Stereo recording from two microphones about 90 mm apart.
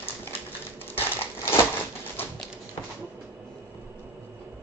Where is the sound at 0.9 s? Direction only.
25° left (ahead or behind).